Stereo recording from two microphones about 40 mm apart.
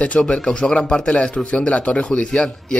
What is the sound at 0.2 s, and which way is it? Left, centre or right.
Speech, left.